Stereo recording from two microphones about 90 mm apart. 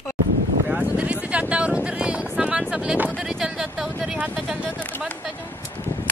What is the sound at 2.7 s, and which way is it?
Speech, 10° right (ahead or behind).